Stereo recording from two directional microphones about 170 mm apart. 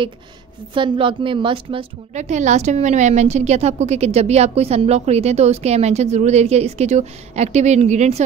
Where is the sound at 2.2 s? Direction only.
45° right (ahead or behind).